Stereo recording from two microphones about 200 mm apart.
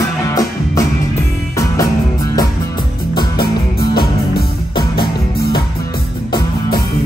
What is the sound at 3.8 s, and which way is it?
Music, 20° left (ahead or behind).